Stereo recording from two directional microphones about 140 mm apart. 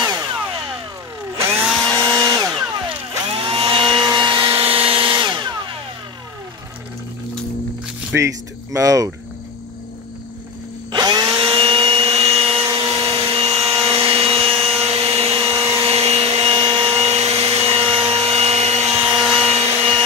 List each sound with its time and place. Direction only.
0.0 s a sound: 25° right (ahead or behind)
1.7 s chainsaw: 5° left (ahead or behind)
2.0 s chainsaw: 30° right (ahead or behind)
3.4 s chainsaw: 40° right (ahead or behind)
8.1 s speech: 15° right (ahead or behind)
8.7 s speech: 25° right (ahead or behind)
10.9 s tools: 30° right (ahead or behind); by 12.5 s 45° right (ahead or behind)
12.6 s a sound: 40° right (ahead or behind)